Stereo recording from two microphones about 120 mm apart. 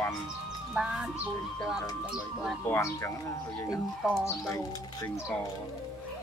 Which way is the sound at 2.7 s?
25° left (ahead or behind).